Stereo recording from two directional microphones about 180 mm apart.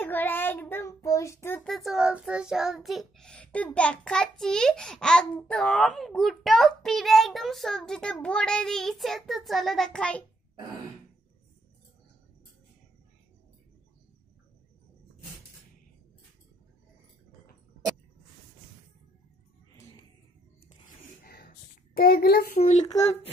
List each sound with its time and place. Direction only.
0.0 s child singing: 10° left (ahead or behind)
1.7 s child singing: centre (ahead or behind)
21.2 s a sound: 55° left (ahead or behind)